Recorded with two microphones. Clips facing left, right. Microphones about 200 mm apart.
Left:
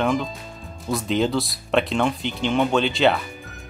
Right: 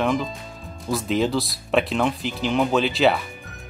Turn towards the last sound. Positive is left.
turn(degrees=0)  # may be behind; listen again after turning